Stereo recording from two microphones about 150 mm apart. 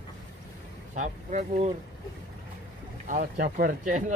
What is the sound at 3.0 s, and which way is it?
Speech, 60° right (ahead or behind).